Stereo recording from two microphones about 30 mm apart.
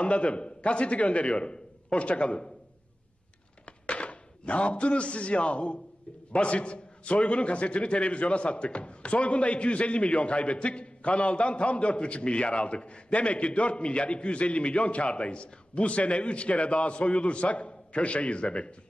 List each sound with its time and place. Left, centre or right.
0.0 s speech: left
3.6 s a man's voice: left